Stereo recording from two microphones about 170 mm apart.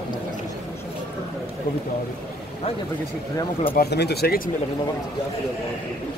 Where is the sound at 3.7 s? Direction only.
75° left (ahead or behind).